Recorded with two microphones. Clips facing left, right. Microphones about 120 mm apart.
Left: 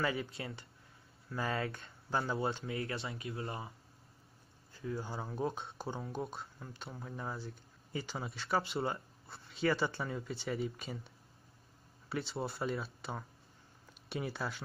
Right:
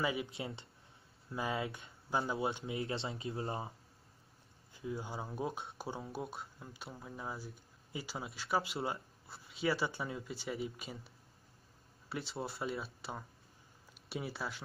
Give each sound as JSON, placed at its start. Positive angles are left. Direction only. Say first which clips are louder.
{"t": 0.0, "sound": "speech", "louder": "left 1 dB", "side_deg": -10}
{"t": 0.4, "sound": "speech", "louder": "right 1 dB", "side_deg": -25}
{"t": 1.5, "sound": "speech", "louder": "left 1 dB", "side_deg": -5}
{"t": 2.5, "sound": "speech", "louder": "even", "side_deg": -20}
{"t": 5.2, "sound": "speech", "louder": "left 2 dB", "side_deg": -5}